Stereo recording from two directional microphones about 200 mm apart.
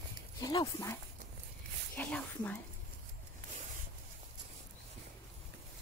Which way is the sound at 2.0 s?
5° left (ahead or behind).